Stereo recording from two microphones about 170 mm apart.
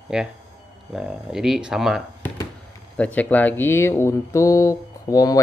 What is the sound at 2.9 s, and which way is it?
Speech, 10° left (ahead or behind).